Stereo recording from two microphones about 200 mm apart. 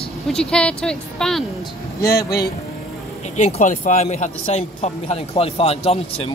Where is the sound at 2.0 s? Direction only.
15° left (ahead or behind).